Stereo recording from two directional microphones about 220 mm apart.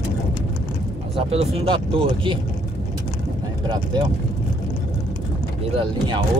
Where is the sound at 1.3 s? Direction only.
25° right (ahead or behind).